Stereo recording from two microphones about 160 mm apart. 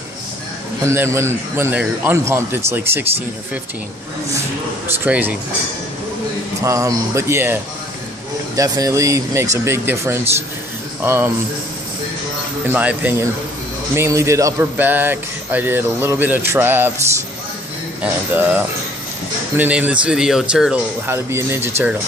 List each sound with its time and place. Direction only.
0.8 s speech: 15° right (ahead or behind)
5.0 s speech: 10° right (ahead or behind)
6.6 s speech: 20° right (ahead or behind)
8.5 s speech: 20° right (ahead or behind)
12.6 s speech: 10° right (ahead or behind)
21.1 s speech: 15° right (ahead or behind)